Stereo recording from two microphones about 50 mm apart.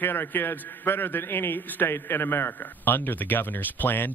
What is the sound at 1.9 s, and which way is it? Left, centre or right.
Speech, left.